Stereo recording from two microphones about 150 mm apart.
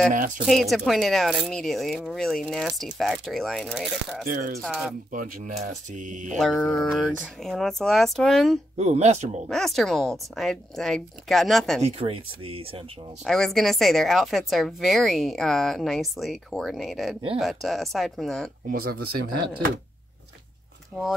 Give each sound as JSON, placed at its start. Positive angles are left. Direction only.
{"t": 0.1, "sound": "speech", "side_deg": -60}
{"t": 0.5, "sound": "a woman's voice", "side_deg": 0}
{"t": 4.3, "sound": "speech", "side_deg": -65}
{"t": 4.6, "sound": "a woman's voice", "side_deg": 0}
{"t": 5.1, "sound": "speech", "side_deg": -60}
{"t": 6.2, "sound": "a woman's voice", "side_deg": 0}
{"t": 8.7, "sound": "speech", "side_deg": -45}
{"t": 9.5, "sound": "a woman's voice", "side_deg": 0}
{"t": 11.8, "sound": "speech", "side_deg": -40}
{"t": 13.2, "sound": "a woman's voice", "side_deg": 0}
{"t": 18.7, "sound": "speech", "side_deg": -90}